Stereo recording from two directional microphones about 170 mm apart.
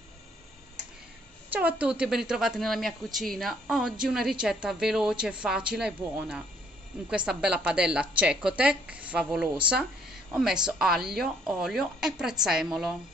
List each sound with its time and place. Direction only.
1.5 s a woman's voice: 10° right (ahead or behind)